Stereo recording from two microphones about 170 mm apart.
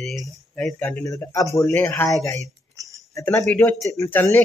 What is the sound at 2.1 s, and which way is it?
Speech, 20° left (ahead or behind).